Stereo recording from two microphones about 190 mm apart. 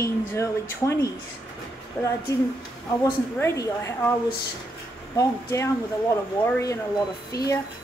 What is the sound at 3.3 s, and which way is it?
Speech, 15° left (ahead or behind).